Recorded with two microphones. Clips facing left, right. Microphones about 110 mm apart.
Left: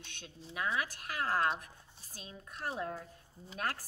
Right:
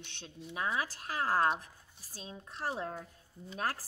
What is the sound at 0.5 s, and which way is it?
A woman's voice, 30° right (ahead or behind).